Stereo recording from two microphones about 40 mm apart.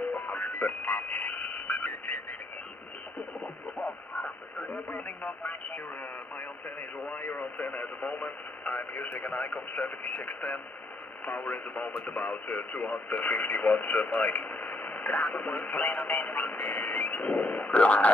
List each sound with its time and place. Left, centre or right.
0.1 s radio: left
4.1 s radio: centre
5.0 s speech: left
7.1 s radio: left
9.8 s speech: left